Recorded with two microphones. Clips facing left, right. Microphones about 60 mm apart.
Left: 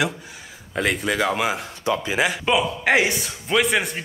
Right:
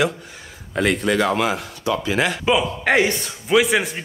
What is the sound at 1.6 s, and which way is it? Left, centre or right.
Speech, left.